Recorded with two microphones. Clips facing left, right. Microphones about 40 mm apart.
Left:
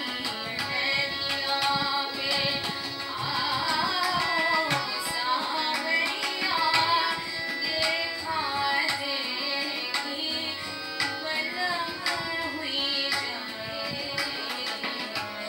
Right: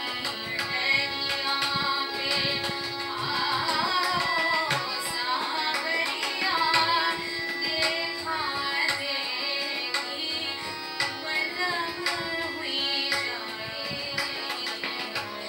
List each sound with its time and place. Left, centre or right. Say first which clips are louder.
2.2 s music: even; centre
3.8 s music: right 1 dB; centre
4.3 s tabla: even; centre
4.6 s tabla: left 1 dB; right
5.2 s music: left 1 dB; centre
6.4 s tabla: right 1 dB; centre
8.4 s music: left 4 dB; centre